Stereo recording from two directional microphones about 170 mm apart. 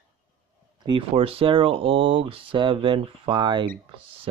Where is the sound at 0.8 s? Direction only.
30° right (ahead or behind).